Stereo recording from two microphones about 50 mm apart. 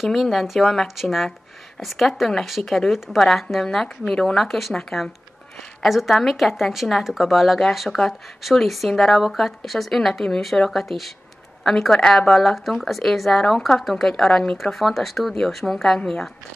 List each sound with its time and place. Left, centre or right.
0.0 s speech: centre
3.6 s speech: centre
4.5 s speech: centre
5.8 s speech: centre
12.1 s speech: centre